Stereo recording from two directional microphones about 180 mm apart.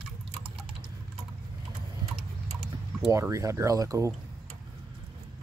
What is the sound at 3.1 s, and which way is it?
Speech, 15° right (ahead or behind).